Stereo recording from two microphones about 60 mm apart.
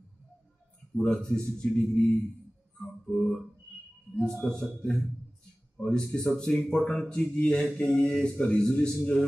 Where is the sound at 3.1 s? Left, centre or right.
Centre.